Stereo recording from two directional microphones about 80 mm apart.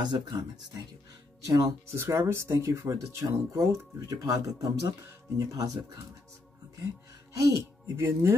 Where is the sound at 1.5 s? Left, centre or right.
Right.